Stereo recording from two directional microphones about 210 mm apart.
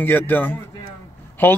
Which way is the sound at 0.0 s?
10° left (ahead or behind).